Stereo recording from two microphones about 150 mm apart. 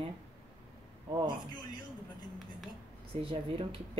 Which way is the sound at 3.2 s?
35° right (ahead or behind).